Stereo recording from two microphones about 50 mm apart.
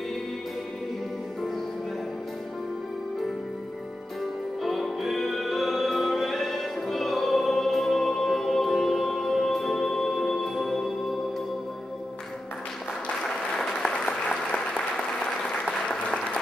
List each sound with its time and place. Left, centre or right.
4.6 s music: centre
13.2 s applause: centre